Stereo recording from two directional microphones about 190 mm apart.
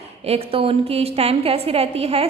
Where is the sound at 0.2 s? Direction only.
30° right (ahead or behind).